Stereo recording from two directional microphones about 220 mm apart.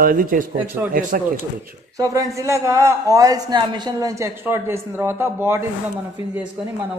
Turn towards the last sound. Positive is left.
turn(degrees=-10)  # may be behind; listen again after turning